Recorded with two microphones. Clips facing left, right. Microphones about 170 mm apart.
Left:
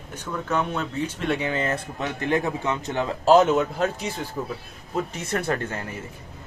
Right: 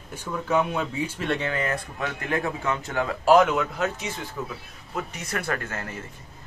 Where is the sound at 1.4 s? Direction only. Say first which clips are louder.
Left 2 dB; 25° left (ahead or behind).